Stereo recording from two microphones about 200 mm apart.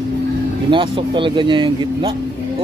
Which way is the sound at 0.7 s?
25° right (ahead or behind).